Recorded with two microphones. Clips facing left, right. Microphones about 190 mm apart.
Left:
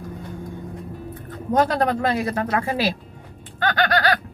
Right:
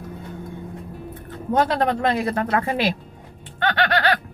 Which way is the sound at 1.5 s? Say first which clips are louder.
Even; 35° left (ahead or behind).